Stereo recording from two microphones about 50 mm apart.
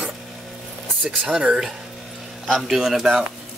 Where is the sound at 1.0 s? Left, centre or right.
Centre.